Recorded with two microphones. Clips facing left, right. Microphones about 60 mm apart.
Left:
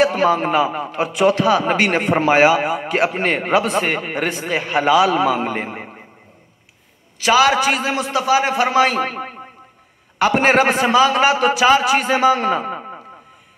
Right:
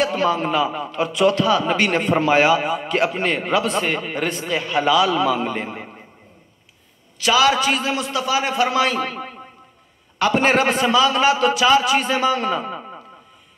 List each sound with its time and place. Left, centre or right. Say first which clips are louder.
0.1 s a man's voice: left 3 dB; left
3.1 s a man's voice: left 3 dB; left
7.2 s a man's voice: left 2 dB; left
10.1 s a man's voice: left 3 dB; left